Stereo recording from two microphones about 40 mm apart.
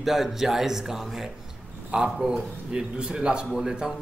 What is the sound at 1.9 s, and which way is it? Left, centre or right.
A man's voice, right.